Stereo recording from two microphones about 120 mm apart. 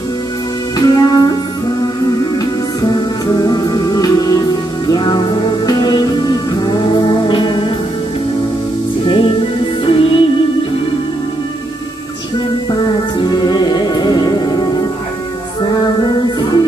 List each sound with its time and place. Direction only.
0.7 s music: 35° left (ahead or behind)
2.9 s music: 30° left (ahead or behind)
9.0 s music: 45° left (ahead or behind)
13.2 s music: 35° left (ahead or behind)